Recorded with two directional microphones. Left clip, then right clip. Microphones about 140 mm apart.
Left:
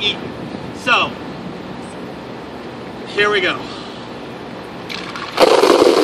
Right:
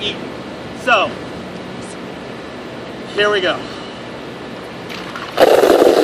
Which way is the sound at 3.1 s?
15° left (ahead or behind).